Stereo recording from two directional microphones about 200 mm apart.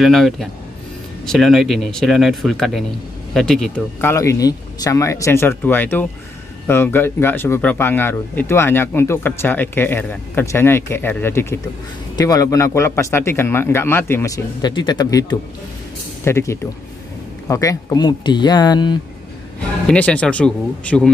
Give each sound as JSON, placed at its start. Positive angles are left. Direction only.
{"t": 0.0, "sound": "speech", "side_deg": 0}
{"t": 4.1, "sound": "speech", "side_deg": 15}
{"t": 19.9, "sound": "speech", "side_deg": 5}